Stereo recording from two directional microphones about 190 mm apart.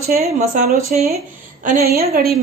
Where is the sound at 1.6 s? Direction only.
50° right (ahead or behind).